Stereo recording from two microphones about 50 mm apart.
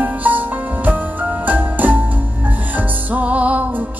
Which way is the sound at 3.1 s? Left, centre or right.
Right.